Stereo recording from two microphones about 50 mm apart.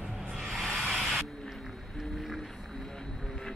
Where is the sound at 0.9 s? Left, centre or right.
Centre.